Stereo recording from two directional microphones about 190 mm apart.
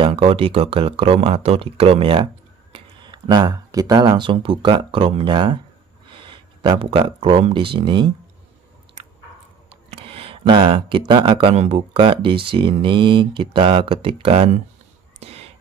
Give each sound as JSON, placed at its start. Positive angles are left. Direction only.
{"t": 0.0, "sound": "speech", "side_deg": -30}
{"t": 9.7, "sound": "speech", "side_deg": -30}
{"t": 15.1, "sound": "a sound", "side_deg": -30}